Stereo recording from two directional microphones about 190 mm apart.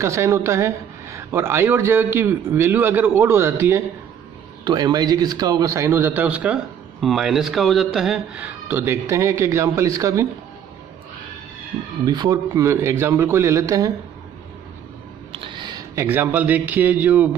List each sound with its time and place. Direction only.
0.0 s speech: 15° right (ahead or behind)
12.0 s speech: 20° right (ahead or behind)
15.3 s speech: 25° right (ahead or behind); by 17.3 s 10° right (ahead or behind)